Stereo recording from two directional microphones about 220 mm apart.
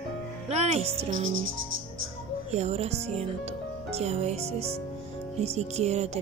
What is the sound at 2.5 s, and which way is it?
Speech, 30° right (ahead or behind).